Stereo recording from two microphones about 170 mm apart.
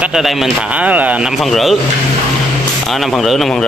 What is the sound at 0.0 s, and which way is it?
Speech, centre (ahead or behind).